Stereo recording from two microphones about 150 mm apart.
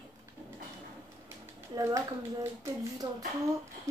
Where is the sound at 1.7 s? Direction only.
20° right (ahead or behind).